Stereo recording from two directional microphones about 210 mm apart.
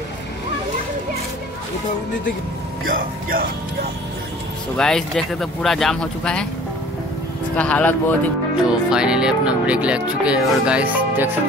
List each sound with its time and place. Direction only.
3.0 s speech: 45° right (ahead or behind)
4.7 s speech: 5° left (ahead or behind)
7.5 s speech: 5° left (ahead or behind)
8.6 s speech: 5° right (ahead or behind)